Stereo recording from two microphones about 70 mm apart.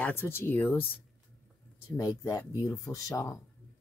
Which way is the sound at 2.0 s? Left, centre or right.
Left.